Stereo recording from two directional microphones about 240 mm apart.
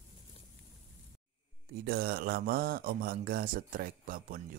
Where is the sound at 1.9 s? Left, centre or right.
Right.